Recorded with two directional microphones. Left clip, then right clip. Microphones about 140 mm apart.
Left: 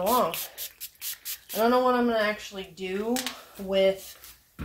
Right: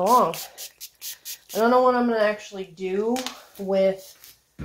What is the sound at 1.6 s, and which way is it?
A woman's voice, 45° right (ahead or behind).